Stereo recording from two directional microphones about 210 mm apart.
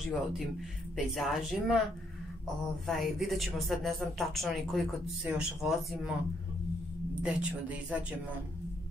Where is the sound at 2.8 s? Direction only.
Centre (ahead or behind).